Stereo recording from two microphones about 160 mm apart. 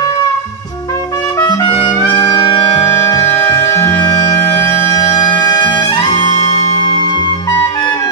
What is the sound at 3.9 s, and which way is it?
Music, 25° left (ahead or behind).